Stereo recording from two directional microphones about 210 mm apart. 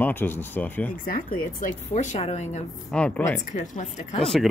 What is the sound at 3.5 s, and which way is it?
Speech, 35° left (ahead or behind).